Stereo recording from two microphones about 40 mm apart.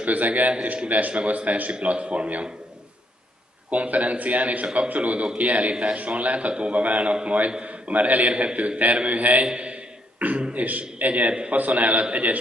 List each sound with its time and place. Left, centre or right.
0.0 s a man's voice: right
0.8 s a man's voice: right
3.7 s a man's voice: right
9.5 s a man's voice: right
10.1 s a sound: right
10.5 s a man's voice: right